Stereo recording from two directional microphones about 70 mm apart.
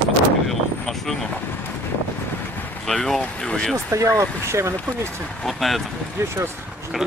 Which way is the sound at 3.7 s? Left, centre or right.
Right.